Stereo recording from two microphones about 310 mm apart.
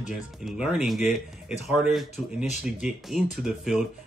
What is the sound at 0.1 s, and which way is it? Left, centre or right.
Speech, centre.